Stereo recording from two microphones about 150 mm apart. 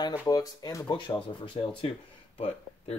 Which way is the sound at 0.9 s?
35° left (ahead or behind).